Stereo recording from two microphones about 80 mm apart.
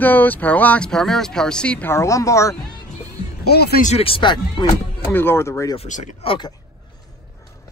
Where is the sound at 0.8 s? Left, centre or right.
Centre.